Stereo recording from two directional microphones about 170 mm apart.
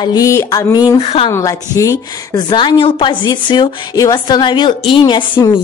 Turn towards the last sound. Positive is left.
turn(degrees=25)  # may be behind; listen again after turning